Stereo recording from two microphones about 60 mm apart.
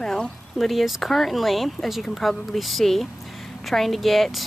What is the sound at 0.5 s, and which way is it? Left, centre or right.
Speech, centre.